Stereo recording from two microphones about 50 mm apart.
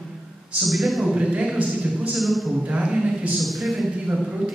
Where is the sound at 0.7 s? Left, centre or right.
Centre.